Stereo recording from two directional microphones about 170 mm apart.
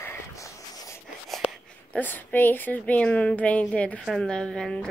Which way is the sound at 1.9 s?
10° left (ahead or behind).